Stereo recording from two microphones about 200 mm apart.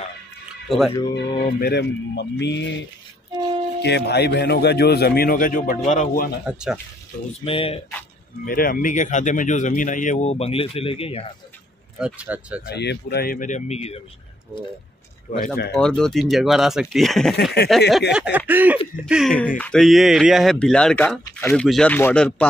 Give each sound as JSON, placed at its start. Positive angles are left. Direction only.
{"t": 0.7, "sound": "speech", "side_deg": 0}
{"t": 1.6, "sound": "a man's voice", "side_deg": 55}
{"t": 3.8, "sound": "a man's voice", "side_deg": 55}
{"t": 6.4, "sound": "speech", "side_deg": -5}
{"t": 7.4, "sound": "speech", "side_deg": 30}
{"t": 8.5, "sound": "speech", "side_deg": 45}
{"t": 12.0, "sound": "speech", "side_deg": -5}
{"t": 12.7, "sound": "speech", "side_deg": 55}
{"t": 15.4, "sound": "a man's voice", "side_deg": 50}
{"t": 15.7, "sound": "speech", "side_deg": 5}
{"t": 17.4, "sound": "a man's voice", "side_deg": 55}
{"t": 18.1, "sound": "speech", "side_deg": -5}